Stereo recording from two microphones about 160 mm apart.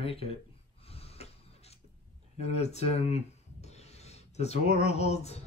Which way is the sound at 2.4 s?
40° left (ahead or behind).